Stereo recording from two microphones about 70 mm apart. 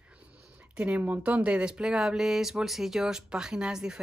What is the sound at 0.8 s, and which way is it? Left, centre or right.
Speech, right.